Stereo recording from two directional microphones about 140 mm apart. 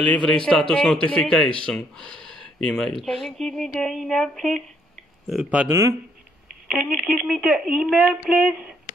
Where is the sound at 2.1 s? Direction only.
35° right (ahead or behind).